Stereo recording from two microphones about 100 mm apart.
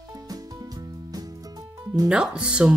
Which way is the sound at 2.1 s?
10° right (ahead or behind).